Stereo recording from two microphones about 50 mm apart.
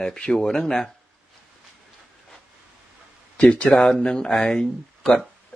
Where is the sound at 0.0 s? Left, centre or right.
Centre.